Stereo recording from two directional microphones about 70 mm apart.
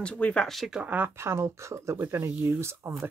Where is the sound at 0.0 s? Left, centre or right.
Centre.